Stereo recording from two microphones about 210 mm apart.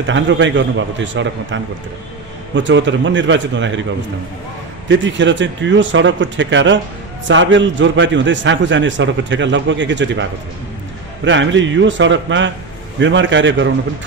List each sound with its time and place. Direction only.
0.0 s a man's voice: 60° right (ahead or behind)
4.8 s a man's voice: 60° right (ahead or behind)
11.2 s a man's voice: 60° right (ahead or behind)